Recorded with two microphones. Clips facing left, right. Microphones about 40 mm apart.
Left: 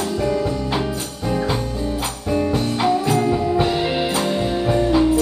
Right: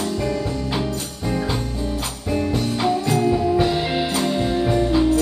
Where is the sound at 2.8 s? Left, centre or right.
Centre.